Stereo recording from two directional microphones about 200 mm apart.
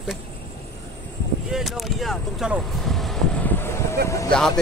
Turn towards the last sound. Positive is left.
turn(degrees=5)  # may be behind; listen again after turning